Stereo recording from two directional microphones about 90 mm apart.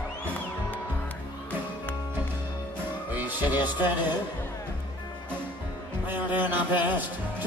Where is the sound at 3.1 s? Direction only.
20° right (ahead or behind).